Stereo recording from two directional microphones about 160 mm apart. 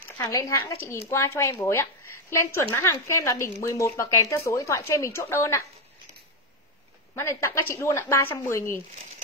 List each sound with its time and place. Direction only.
0.2 s speech: 20° left (ahead or behind)
7.2 s speech: 15° left (ahead or behind)